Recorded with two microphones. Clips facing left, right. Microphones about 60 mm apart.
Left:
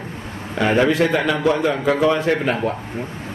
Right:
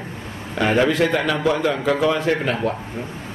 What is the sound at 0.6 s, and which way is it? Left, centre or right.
A man's voice, centre.